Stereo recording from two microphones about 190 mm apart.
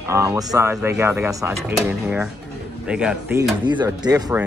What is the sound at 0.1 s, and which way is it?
Speech, 15° right (ahead or behind).